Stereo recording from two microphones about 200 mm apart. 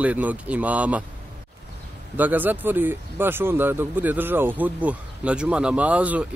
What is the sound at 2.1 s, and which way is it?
Speech, 10° right (ahead or behind).